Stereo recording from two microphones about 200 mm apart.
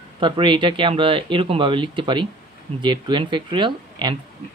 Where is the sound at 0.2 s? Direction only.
25° right (ahead or behind).